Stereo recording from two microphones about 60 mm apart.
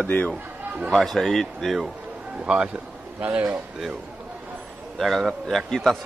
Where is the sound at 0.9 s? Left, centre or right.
Centre.